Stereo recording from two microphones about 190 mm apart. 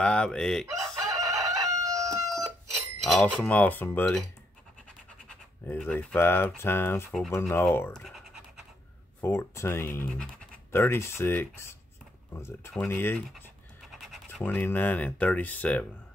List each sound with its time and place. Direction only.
0.0 s chicken: 5° left (ahead or behind)
1.4 s crowing: 15° right (ahead or behind)
2.3 s speech: centre (ahead or behind)
5.7 s speech: 10° left (ahead or behind)
9.2 s speech: 15° left (ahead or behind)
14.4 s speech: 10° left (ahead or behind)